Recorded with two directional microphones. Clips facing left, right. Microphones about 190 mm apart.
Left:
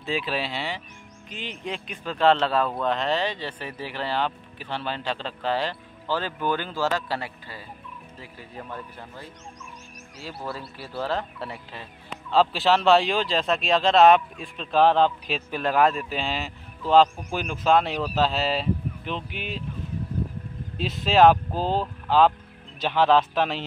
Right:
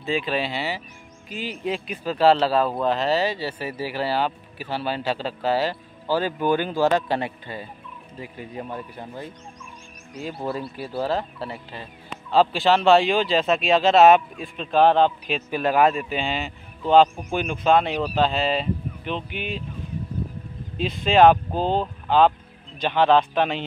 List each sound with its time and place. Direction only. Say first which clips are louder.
0.0 s speech: right 3 dB; centre (ahead or behind)
20.7 s speech: right 2 dB; centre (ahead or behind)